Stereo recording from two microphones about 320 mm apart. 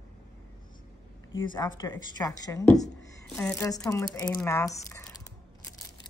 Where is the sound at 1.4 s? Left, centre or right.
Centre.